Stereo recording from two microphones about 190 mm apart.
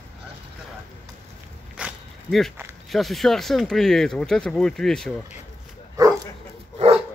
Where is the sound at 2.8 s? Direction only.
Centre (ahead or behind).